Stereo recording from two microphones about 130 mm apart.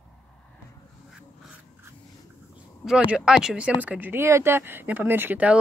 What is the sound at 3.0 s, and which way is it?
Speech, 10° right (ahead or behind).